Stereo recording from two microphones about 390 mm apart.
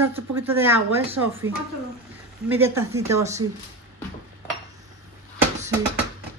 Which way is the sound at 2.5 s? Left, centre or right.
Centre.